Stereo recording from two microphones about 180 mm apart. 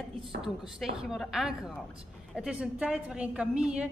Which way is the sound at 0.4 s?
Centre (ahead or behind).